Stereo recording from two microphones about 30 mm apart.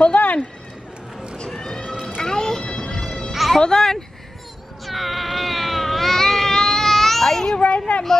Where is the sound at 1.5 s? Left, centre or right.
Left.